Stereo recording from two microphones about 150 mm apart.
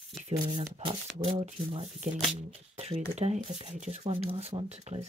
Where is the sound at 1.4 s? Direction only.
45° right (ahead or behind).